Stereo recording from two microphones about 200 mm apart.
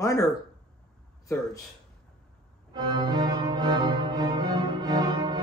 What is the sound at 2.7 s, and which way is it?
Music, 20° right (ahead or behind).